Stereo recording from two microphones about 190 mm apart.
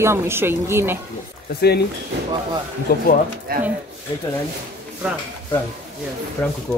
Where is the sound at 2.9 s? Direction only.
55° left (ahead or behind).